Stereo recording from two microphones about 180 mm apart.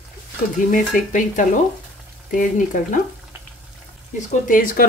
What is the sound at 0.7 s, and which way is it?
Speech, 45° left (ahead or behind).